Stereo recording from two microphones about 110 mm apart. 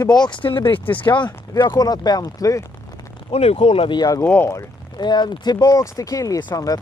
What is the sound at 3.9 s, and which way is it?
Speech, 30° left (ahead or behind).